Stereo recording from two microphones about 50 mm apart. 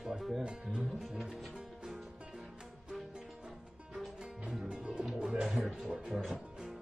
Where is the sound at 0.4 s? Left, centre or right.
Centre.